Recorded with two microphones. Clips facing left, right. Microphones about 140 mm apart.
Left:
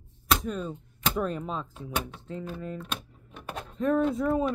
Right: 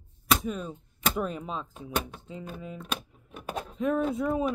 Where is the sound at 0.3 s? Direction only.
5° right (ahead or behind).